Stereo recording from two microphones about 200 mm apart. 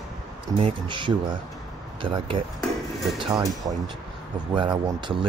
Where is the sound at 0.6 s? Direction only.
30° right (ahead or behind).